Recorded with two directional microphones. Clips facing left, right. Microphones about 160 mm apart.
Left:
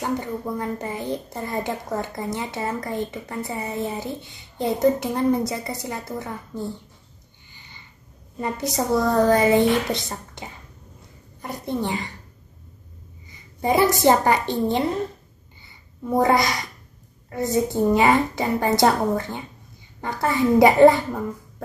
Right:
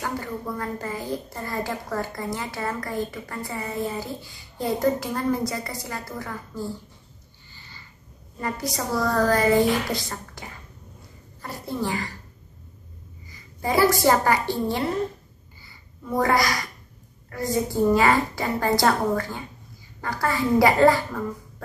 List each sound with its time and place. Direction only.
0.0 s a woman's voice: 20° left (ahead or behind)
7.5 s a sound: 20° left (ahead or behind)
8.7 s a woman's voice: 20° left (ahead or behind)
13.3 s a woman's voice: 20° left (ahead or behind)
16.2 s a woman's voice: 20° left (ahead or behind)
17.6 s a woman's voice: 20° left (ahead or behind)